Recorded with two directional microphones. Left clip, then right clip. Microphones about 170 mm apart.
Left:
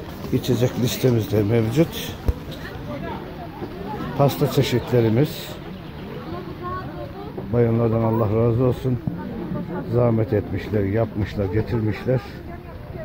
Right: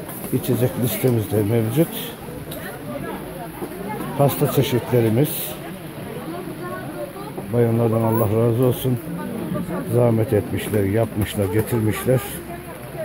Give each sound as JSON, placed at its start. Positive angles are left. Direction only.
{"t": 0.5, "sound": "speech", "side_deg": -5}
{"t": 4.2, "sound": "speech", "side_deg": -10}
{"t": 7.5, "sound": "speech", "side_deg": -15}
{"t": 9.9, "sound": "speech", "side_deg": -20}